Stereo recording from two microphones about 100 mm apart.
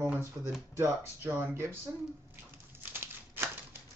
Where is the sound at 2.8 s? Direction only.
20° right (ahead or behind).